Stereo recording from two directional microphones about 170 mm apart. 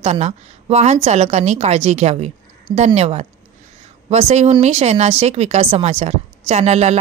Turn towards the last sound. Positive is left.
turn(degrees=-40)  # may be behind; listen again after turning